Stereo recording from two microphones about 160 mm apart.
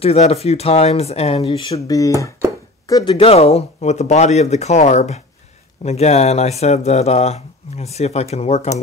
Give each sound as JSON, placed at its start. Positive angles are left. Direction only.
{"t": 0.0, "sound": "speech", "side_deg": 40}
{"t": 1.7, "sound": "speech", "side_deg": 20}
{"t": 3.2, "sound": "speech", "side_deg": 40}